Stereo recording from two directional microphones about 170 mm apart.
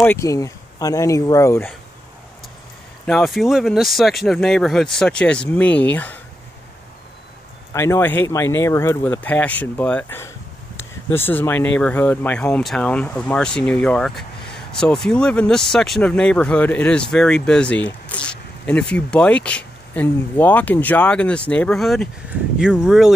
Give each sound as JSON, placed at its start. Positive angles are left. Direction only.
{"t": 0.0, "sound": "speech", "side_deg": 15}
{"t": 3.1, "sound": "speech", "side_deg": 0}
{"t": 7.7, "sound": "speech", "side_deg": 15}